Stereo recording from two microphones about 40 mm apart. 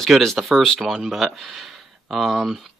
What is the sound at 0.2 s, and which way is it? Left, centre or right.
Speech, centre.